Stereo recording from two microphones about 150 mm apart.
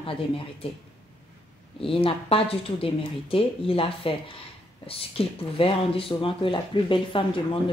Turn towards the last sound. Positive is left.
turn(degrees=35)  # may be behind; listen again after turning